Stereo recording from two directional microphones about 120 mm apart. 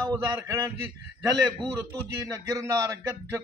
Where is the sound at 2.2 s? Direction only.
25° right (ahead or behind).